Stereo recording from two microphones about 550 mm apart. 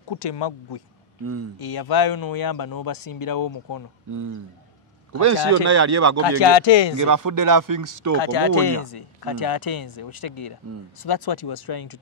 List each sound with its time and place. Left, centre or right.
0.1 s speech: left
1.2 s speech: right
1.6 s speech: left
5.2 s speech: right
6.4 s speech: left
7.0 s speech: right
8.2 s speech: left